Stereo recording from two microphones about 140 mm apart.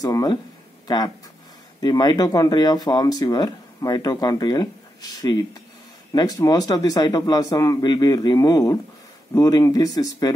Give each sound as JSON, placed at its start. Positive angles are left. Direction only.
{"t": 0.0, "sound": "speech", "side_deg": 25}